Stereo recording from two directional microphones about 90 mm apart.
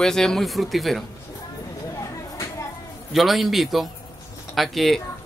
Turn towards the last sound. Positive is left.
turn(degrees=0)  # may be behind; listen again after turning